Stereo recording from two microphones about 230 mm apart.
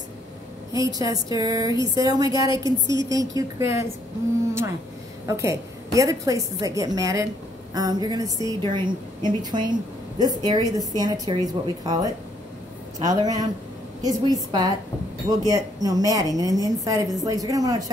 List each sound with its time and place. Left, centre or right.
0.7 s a woman's voice: centre
5.2 s a woman's voice: centre